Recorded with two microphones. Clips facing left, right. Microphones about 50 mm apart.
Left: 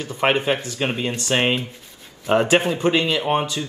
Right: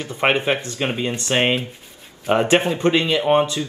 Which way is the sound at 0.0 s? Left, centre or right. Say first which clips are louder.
Right 1 dB; right.